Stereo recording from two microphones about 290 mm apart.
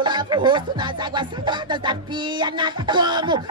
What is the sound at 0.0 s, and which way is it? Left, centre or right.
Music, centre.